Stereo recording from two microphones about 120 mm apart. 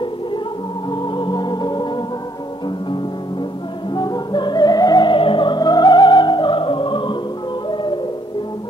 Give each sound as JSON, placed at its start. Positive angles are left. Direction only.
{"t": 1.1, "sound": "music", "side_deg": 40}
{"t": 3.9, "sound": "music", "side_deg": 35}